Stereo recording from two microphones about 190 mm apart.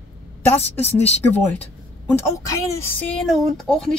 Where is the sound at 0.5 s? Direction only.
35° left (ahead or behind).